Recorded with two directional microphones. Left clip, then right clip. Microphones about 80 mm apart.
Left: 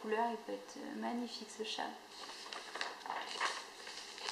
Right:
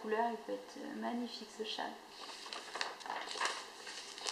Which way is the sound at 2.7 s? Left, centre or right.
Right.